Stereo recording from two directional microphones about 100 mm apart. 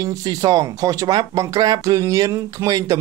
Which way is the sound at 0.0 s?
40° right (ahead or behind).